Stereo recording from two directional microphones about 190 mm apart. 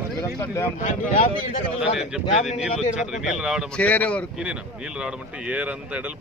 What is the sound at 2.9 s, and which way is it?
A man's voice, centre (ahead or behind).